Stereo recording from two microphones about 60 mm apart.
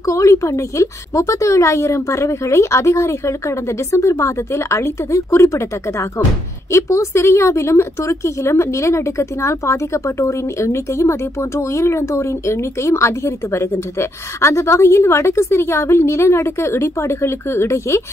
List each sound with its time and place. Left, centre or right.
0.0 s a woman's voice: left